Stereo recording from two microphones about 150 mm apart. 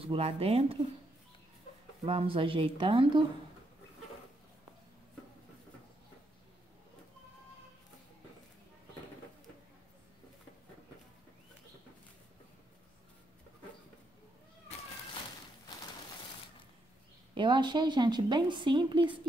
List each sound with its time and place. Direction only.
0.0 s a woman's voice: 40° right (ahead or behind)
2.0 s a woman's voice: 35° right (ahead or behind)
17.3 s a woman's voice: 30° right (ahead or behind)